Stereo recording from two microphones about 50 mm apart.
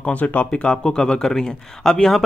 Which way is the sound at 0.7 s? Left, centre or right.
Centre.